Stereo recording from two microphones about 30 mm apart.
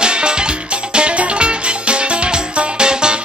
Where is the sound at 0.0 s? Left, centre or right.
Right.